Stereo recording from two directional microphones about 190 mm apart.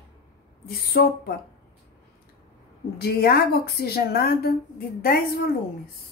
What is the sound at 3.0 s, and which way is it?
A woman's voice, 55° left (ahead or behind).